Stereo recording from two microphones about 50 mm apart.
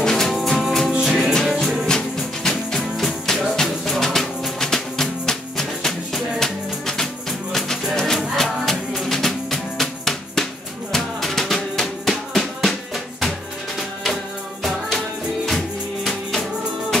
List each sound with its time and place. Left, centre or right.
0.0 s music: centre
0.3 s music: centre
1.9 s music: centre
14.6 s music: centre